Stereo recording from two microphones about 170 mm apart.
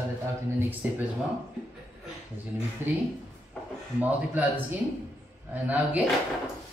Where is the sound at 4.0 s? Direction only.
10° right (ahead or behind).